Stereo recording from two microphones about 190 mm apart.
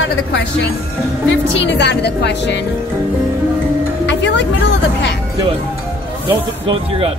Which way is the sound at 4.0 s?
70° left (ahead or behind).